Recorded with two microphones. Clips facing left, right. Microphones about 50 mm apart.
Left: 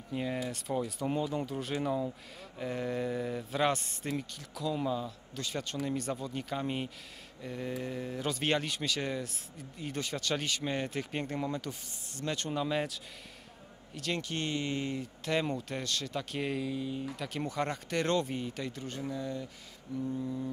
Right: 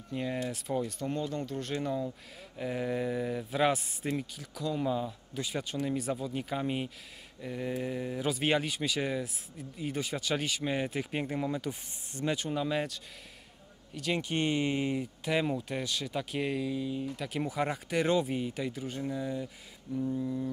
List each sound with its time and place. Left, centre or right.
0.1 s speech: centre
4.9 s speech: centre
12.1 s speech: right
12.4 s speech: centre
14.1 s speech: centre
20.0 s speech: centre